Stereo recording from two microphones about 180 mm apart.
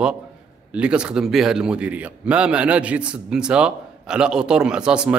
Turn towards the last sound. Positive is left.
turn(degrees=-5)  # may be behind; listen again after turning